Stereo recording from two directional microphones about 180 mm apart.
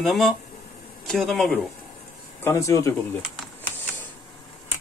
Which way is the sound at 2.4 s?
15° left (ahead or behind).